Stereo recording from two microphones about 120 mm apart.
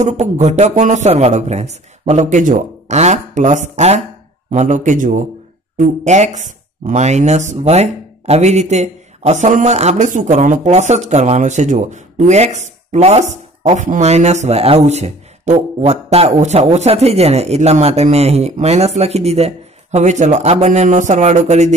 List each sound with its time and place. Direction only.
0.0 s speech: 70° right (ahead or behind)
4.5 s a man's voice: 90° right
5.8 s speech: 75° right (ahead or behind)